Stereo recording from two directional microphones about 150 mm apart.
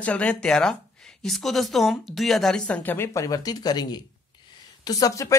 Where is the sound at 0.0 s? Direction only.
10° left (ahead or behind).